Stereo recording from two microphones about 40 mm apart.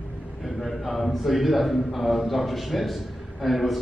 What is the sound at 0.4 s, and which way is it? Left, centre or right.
A man's voice, centre.